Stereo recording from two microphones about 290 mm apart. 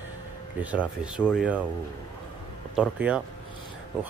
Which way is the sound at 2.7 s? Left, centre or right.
Centre.